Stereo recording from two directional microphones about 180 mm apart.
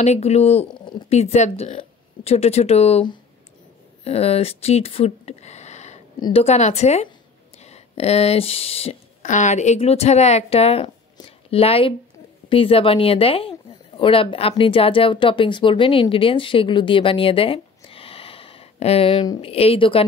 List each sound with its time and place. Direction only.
0.0 s speech: 40° left (ahead or behind)
0.7 s a sound: 25° left (ahead or behind)
1.1 s speech: 40° left (ahead or behind)
6.1 s a woman's voice: 25° left (ahead or behind)
6.4 s speech: 40° left (ahead or behind)
11.1 s a sound: 35° left (ahead or behind)
12.4 s speech: 30° left (ahead or behind)